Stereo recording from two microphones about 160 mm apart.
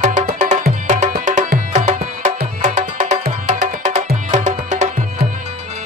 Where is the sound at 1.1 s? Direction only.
60° right (ahead or behind).